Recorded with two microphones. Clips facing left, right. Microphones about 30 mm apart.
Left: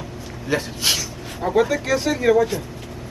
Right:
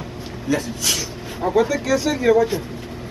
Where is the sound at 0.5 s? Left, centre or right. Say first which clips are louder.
Even; left.